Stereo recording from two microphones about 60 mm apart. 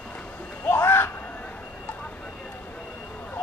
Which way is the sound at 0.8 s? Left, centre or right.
Left.